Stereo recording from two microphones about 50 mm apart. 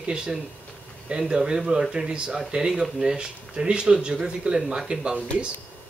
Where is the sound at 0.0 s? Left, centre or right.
Centre.